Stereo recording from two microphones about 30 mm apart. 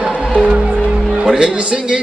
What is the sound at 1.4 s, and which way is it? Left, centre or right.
Music, right.